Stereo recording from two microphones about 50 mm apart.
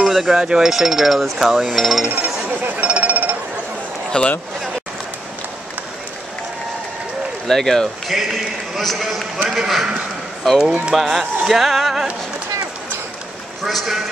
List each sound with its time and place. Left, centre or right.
0.0 s a sound: centre
0.4 s speech: centre
2.0 s chatter: right
2.8 s a sound: right
4.1 s a man's voice: left
7.4 s speech: centre
8.1 s speech: centre
11.0 s speech: centre
13.7 s speech: centre